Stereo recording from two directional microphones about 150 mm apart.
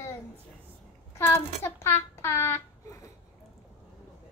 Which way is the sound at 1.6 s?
15° left (ahead or behind).